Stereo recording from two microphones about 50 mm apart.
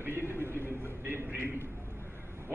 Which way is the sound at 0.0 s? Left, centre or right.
Right.